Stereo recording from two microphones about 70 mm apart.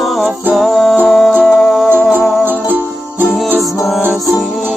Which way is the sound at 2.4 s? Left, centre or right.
Right.